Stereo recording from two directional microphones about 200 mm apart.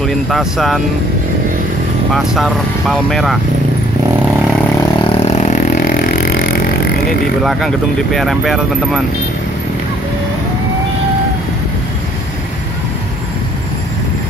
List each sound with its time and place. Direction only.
0.0 s speech: centre (ahead or behind)
2.1 s speech: centre (ahead or behind)
5.1 s vehicle: 35° left (ahead or behind); by 7.2 s 50° left (ahead or behind)
7.4 s speech: centre (ahead or behind)